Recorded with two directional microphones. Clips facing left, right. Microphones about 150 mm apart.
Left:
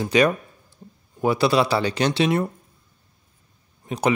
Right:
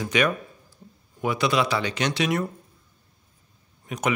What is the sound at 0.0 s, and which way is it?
Speech, 35° left (ahead or behind).